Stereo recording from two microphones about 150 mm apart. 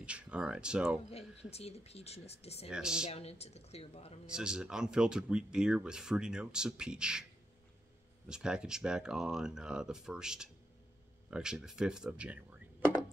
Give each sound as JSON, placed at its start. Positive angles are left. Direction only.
{"t": 0.0, "sound": "speech", "side_deg": -5}
{"t": 1.1, "sound": "speech", "side_deg": 45}
{"t": 2.7, "sound": "speech", "side_deg": -5}
{"t": 3.1, "sound": "speech", "side_deg": 45}
{"t": 4.3, "sound": "speech", "side_deg": -5}
{"t": 8.3, "sound": "speech", "side_deg": -5}